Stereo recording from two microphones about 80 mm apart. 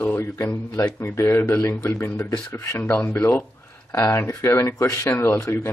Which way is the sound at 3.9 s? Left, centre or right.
Left.